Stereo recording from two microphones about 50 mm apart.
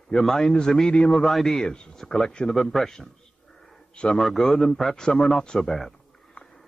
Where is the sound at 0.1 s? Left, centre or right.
Centre.